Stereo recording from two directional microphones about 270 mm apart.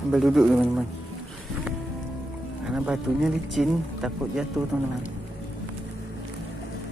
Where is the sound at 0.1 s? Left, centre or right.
Centre.